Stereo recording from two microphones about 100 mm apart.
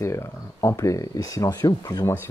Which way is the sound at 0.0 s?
30° left (ahead or behind).